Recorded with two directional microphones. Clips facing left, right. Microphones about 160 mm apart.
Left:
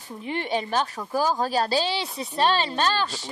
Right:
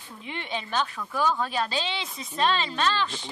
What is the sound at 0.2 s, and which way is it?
Speech, 40° left (ahead or behind).